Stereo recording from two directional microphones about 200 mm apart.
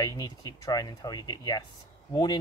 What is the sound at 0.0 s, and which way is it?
Speech, 20° left (ahead or behind).